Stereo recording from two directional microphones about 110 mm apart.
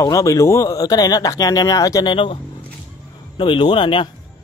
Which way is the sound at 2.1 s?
50° left (ahead or behind).